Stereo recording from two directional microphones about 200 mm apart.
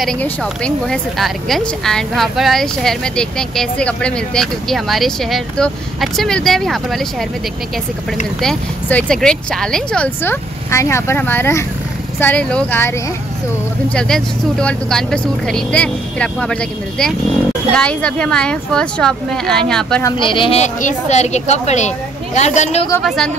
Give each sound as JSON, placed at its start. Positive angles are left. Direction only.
{"t": 0.0, "sound": "speech", "side_deg": 5}
{"t": 8.4, "sound": "speech", "side_deg": 5}
{"t": 13.9, "sound": "speech", "side_deg": 5}
{"t": 17.7, "sound": "speech", "side_deg": 5}
{"t": 20.0, "sound": "a woman's voice", "side_deg": 20}
{"t": 23.0, "sound": "speech", "side_deg": 0}